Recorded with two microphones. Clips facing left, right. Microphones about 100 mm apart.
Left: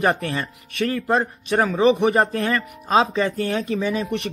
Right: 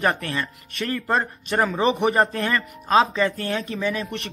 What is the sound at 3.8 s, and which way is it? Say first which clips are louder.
Speech: left 2 dB; 15° left (ahead or behind).